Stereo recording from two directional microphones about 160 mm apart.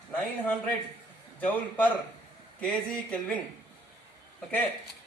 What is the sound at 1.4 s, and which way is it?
Speech, 10° left (ahead or behind).